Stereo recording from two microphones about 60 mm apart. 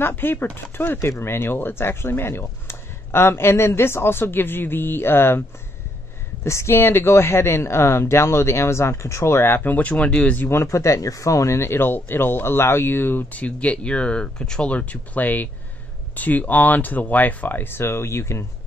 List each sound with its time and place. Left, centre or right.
0.0 s speech: left
6.4 s speech: left; by 10.3 s centre
10.5 s speech: left; by 14.7 s centre
14.7 s speech: left